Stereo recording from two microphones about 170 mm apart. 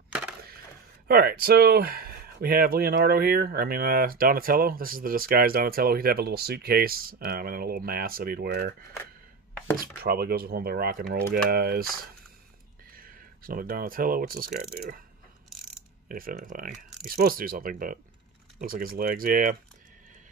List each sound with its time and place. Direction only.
1.0 s speech: 60° right (ahead or behind)
9.8 s speech: 65° right (ahead or behind)
12.9 s speech: 55° right (ahead or behind)
16.1 s speech: 55° right (ahead or behind)